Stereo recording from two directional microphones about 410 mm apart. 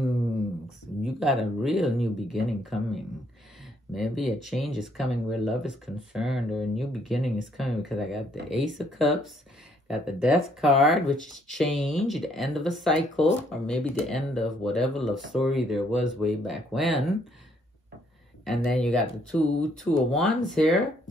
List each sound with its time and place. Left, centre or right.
1.0 s speech: centre
18.4 s speech: centre